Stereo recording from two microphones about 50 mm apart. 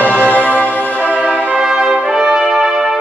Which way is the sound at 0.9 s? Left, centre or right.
Right.